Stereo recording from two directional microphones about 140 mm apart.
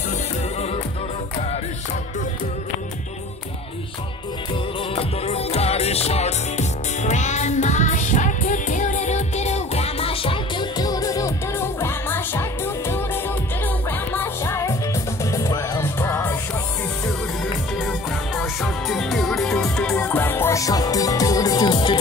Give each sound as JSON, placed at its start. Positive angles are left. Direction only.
{"t": 4.9, "sound": "music", "side_deg": 45}
{"t": 17.7, "sound": "music", "side_deg": 0}